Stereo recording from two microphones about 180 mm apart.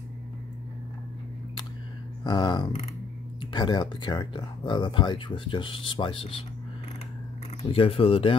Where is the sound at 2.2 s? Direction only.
25° left (ahead or behind).